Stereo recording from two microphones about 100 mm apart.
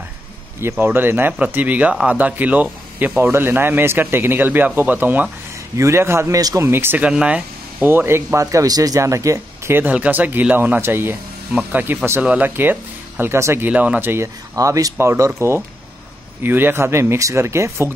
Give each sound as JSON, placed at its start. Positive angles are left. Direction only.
{"t": 0.6, "sound": "speech", "side_deg": -20}
{"t": 6.7, "sound": "speech", "side_deg": -20}
{"t": 7.1, "sound": "speech", "side_deg": -10}
{"t": 13.7, "sound": "speech", "side_deg": -15}